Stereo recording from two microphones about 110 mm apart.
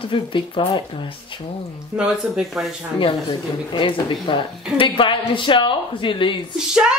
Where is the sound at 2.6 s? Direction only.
5° right (ahead or behind).